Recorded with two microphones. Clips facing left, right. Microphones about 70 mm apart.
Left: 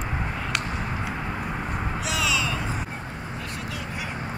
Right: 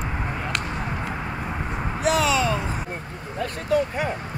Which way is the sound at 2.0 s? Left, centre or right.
Right.